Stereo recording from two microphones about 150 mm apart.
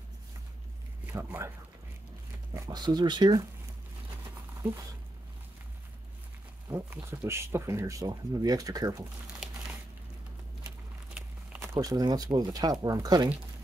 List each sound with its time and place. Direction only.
1.0 s speech: 15° right (ahead or behind)
2.5 s speech: 25° right (ahead or behind)
6.7 s speech: 15° right (ahead or behind)
11.1 s speech: 15° right (ahead or behind)